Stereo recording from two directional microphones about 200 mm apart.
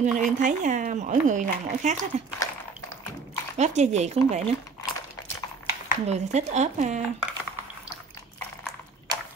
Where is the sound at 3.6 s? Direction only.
35° right (ahead or behind).